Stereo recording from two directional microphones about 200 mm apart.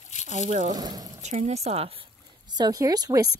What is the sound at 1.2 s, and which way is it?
Speech, 35° right (ahead or behind).